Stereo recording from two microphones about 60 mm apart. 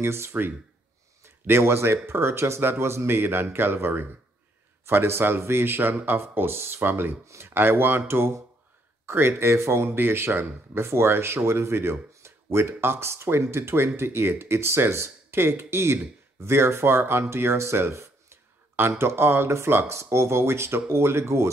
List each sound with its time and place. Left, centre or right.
0.0 s speech: right
9.0 s speech: right